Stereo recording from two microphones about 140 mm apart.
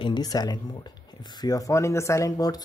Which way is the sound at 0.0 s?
30° left (ahead or behind).